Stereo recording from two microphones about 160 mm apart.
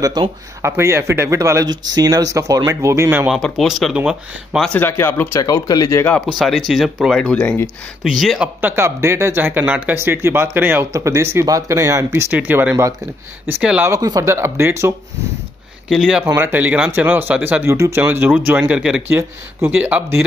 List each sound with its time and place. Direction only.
0.0 s speech: 25° right (ahead or behind)
3.3 s speech: centre (ahead or behind)
4.7 s speech: 15° left (ahead or behind)
6.3 s speech: centre (ahead or behind)
8.5 s speech: 15° right (ahead or behind)
13.8 s speech: 20° right (ahead or behind)
15.9 s speech: 5° right (ahead or behind)
16.3 s speech: 15° right (ahead or behind)